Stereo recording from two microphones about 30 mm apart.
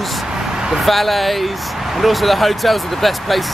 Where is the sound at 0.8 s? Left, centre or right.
Centre.